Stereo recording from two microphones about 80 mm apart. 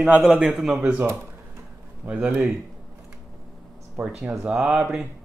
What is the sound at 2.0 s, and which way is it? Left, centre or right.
Speech, right.